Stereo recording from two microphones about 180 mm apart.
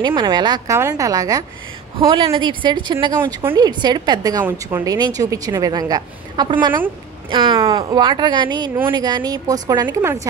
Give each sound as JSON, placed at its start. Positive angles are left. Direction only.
{"t": 0.0, "sound": "a woman's voice", "side_deg": -25}